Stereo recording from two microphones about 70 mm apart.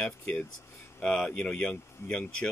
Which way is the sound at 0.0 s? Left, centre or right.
Centre.